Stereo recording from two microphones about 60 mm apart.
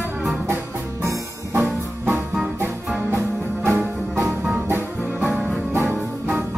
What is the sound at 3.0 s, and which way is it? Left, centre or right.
Music, right.